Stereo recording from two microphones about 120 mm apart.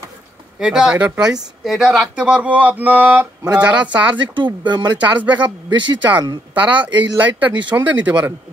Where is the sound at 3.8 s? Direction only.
40° right (ahead or behind).